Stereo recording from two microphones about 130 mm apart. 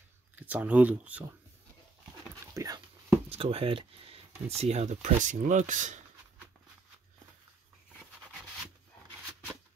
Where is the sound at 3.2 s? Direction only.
50° right (ahead or behind); by 6.0 s 75° right (ahead or behind).